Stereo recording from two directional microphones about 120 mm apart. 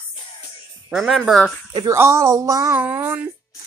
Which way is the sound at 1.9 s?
20° right (ahead or behind).